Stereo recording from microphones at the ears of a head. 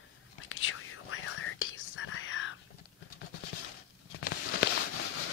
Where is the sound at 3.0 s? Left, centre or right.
Left.